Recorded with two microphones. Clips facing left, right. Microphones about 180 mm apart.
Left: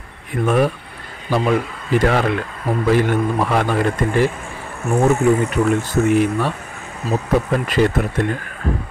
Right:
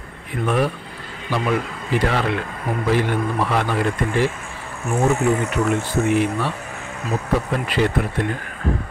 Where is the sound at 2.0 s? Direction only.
45° left (ahead or behind).